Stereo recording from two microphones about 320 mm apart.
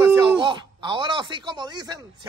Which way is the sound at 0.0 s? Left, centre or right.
Centre.